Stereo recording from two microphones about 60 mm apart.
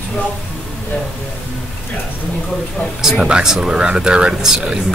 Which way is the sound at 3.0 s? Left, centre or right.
Centre.